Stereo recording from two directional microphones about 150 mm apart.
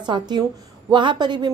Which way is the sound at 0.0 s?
30° right (ahead or behind).